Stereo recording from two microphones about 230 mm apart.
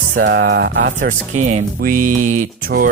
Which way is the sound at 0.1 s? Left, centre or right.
Right.